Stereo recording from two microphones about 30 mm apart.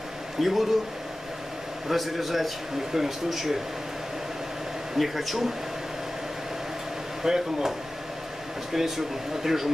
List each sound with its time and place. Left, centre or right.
0.4 s speech: centre
1.9 s speech: centre
4.9 s speech: centre
7.2 s speech: centre
8.7 s speech: centre